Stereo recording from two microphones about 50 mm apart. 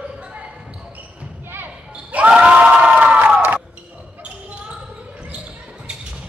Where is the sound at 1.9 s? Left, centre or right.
Right.